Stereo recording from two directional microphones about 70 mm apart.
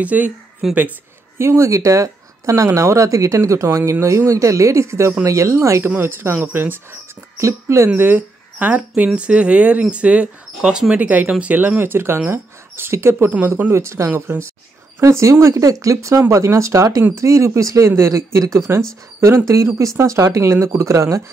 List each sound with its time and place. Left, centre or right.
0.0 s speech: right
0.6 s speech: centre
1.4 s speech: right
5.9 s speech: right
7.3 s speech: right
8.0 s speech: right
13.3 s speech: right
13.7 s speech: right
14.2 s speech: right
15.0 s speech: right